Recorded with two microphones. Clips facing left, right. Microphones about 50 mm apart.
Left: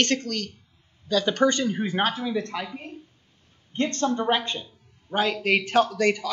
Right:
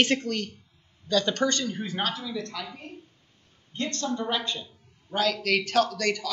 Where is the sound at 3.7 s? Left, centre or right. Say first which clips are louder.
Left 5 dB; left.